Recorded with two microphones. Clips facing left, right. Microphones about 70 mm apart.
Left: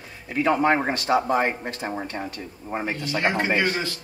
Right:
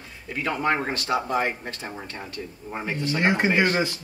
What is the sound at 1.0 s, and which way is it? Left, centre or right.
Speech, left.